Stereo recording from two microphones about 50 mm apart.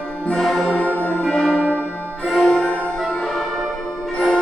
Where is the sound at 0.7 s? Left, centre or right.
Left.